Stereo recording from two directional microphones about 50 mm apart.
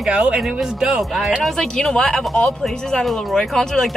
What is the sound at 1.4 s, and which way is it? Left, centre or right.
Speech, centre.